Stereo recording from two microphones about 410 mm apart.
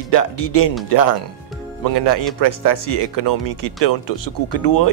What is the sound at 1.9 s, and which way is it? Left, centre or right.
Speech, left.